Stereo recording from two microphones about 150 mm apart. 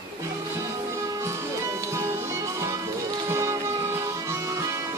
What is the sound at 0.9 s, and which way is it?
Music, 20° right (ahead or behind).